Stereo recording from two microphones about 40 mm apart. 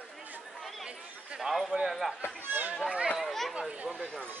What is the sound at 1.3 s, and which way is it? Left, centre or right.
Clip-clop, centre.